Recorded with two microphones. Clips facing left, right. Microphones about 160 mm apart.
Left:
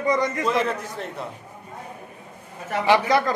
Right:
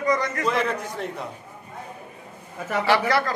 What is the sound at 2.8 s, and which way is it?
Speech, 15° left (ahead or behind).